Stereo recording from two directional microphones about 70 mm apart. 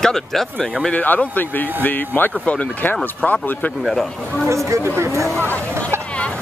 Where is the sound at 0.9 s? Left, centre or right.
Left.